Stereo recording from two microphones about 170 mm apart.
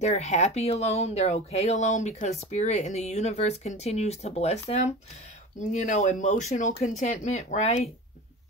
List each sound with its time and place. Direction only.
0.0 s speech: 45° left (ahead or behind)